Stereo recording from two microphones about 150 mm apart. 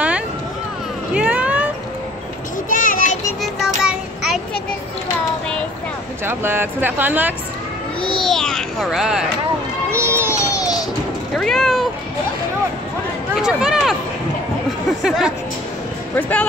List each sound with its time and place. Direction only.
1.1 s a sound: 10° right (ahead or behind)
2.7 s children playing: 65° left (ahead or behind)
3.5 s child singing: centre (ahead or behind)
6.2 s speech: 15° right (ahead or behind)
8.2 s a sound: 5° left (ahead or behind)
9.8 s children playing: 15° right (ahead or behind)
10.3 s a sound: 20° left (ahead or behind)
11.3 s speech: centre (ahead or behind)
13.3 s speech: 5° right (ahead or behind)
15.0 s speech: 5° right (ahead or behind)
16.2 s speech: 10° left (ahead or behind)